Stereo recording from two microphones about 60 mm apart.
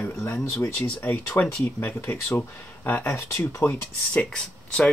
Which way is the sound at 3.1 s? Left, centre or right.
Left.